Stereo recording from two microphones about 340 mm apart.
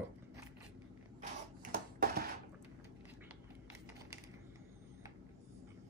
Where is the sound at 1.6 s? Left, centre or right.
Right.